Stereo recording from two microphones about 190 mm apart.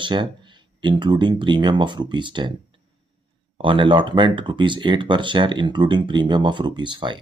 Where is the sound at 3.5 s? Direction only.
25° right (ahead or behind).